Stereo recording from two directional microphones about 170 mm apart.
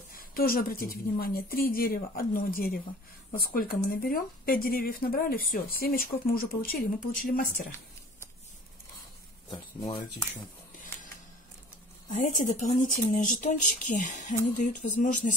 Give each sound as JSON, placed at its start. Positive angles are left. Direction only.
{"t": 0.2, "sound": "a woman's voice", "side_deg": 60}
{"t": 9.5, "sound": "speech", "side_deg": 20}
{"t": 12.1, "sound": "speech", "side_deg": 45}